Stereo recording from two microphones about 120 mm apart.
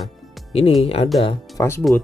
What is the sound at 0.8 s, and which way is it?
Speech, 55° left (ahead or behind).